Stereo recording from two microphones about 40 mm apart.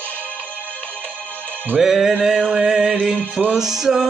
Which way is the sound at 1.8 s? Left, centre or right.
Centre.